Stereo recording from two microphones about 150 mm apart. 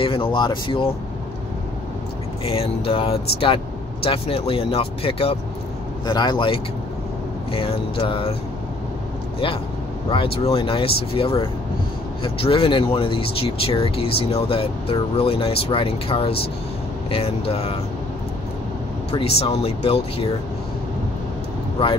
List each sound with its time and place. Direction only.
0.0 s speech: 35° left (ahead or behind)
2.4 s speech: 40° left (ahead or behind)
6.0 s speech: 30° left (ahead or behind)
10.1 s speech: 40° left (ahead or behind)
19.1 s speech: 40° left (ahead or behind)